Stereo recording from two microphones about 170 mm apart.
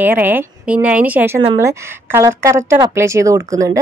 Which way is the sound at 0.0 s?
10° right (ahead or behind).